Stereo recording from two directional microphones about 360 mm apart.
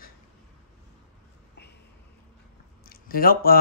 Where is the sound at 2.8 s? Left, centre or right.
Left.